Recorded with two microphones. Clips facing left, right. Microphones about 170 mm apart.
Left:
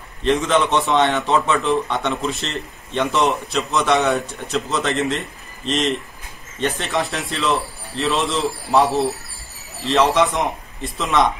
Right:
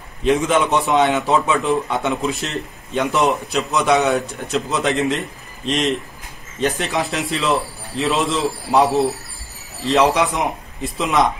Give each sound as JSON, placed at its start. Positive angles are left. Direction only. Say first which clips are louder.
{"t": 0.2, "sound": "a man's voice", "louder": "right 1 dB", "side_deg": -5}